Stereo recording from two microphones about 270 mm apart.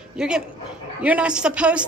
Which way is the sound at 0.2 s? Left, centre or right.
Centre.